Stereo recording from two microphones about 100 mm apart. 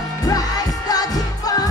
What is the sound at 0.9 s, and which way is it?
Music, 40° left (ahead or behind).